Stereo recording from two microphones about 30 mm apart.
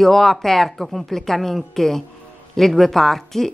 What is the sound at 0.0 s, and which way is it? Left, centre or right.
A woman's voice, centre.